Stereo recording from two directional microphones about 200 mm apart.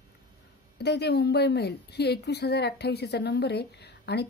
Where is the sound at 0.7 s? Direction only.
55° left (ahead or behind).